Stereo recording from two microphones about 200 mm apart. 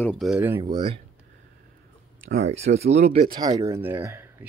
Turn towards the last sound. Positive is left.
turn(degrees=-10)  # may be behind; listen again after turning